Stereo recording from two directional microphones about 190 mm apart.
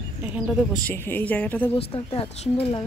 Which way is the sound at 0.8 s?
10° left (ahead or behind).